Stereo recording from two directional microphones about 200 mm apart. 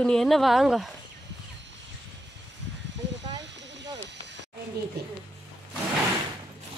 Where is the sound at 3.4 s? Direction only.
60° right (ahead or behind).